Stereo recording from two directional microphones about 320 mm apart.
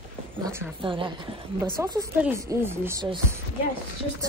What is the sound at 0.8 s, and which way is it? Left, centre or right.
Speech, centre.